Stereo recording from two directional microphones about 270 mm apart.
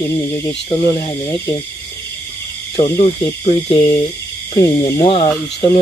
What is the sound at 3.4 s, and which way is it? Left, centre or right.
Speech, left.